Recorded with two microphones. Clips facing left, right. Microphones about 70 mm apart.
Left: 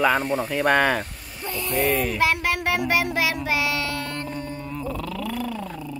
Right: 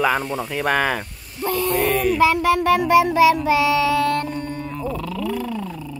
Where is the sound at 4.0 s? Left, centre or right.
Right.